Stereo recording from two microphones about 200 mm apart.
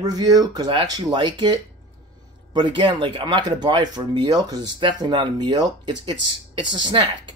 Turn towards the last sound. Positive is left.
turn(degrees=-25)  # may be behind; listen again after turning